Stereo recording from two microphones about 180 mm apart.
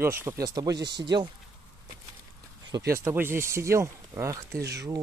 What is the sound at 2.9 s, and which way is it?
Speech, 10° right (ahead or behind).